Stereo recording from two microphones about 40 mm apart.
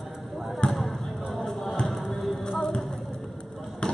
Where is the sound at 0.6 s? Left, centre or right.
Left.